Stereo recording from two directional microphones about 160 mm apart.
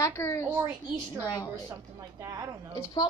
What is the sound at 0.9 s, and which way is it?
Speech, 20° left (ahead or behind).